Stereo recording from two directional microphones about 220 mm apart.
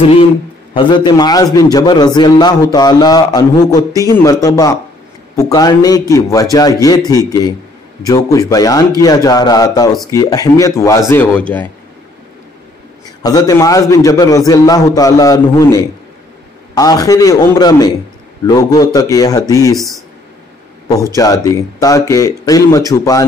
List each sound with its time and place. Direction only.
0.7 s a man's voice: 20° left (ahead or behind)
13.2 s a man's voice: 15° left (ahead or behind)
21.0 s a man's voice: 15° left (ahead or behind)